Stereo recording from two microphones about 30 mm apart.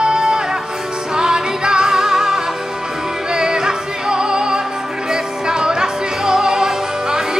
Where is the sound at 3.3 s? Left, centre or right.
Right.